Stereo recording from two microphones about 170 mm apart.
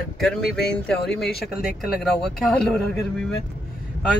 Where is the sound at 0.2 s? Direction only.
Centre (ahead or behind).